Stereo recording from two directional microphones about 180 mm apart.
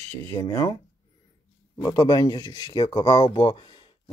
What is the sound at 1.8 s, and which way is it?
Speech, 25° left (ahead or behind).